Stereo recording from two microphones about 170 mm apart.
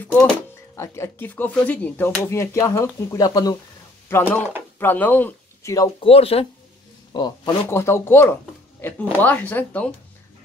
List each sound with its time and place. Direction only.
0.0 s speech: 10° left (ahead or behind)
5.9 s speech: 35° left (ahead or behind); by 9.9 s 10° left (ahead or behind)